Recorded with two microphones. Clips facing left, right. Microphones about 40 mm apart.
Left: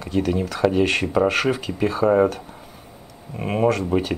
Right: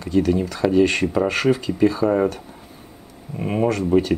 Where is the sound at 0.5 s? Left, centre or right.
Centre.